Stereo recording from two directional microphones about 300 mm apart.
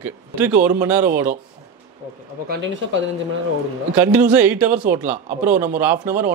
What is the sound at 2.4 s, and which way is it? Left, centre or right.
Speech, right.